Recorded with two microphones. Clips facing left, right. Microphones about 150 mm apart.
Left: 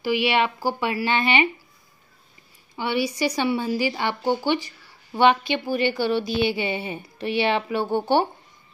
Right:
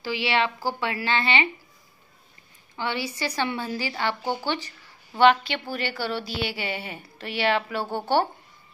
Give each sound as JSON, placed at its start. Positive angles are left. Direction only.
{"t": 0.0, "sound": "a woman's voice", "side_deg": 15}
{"t": 2.7, "sound": "a woman's voice", "side_deg": 15}